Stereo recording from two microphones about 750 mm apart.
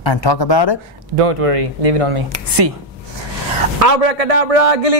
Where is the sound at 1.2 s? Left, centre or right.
Right.